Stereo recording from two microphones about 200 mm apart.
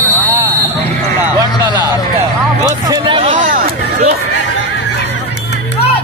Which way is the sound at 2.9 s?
25° right (ahead or behind).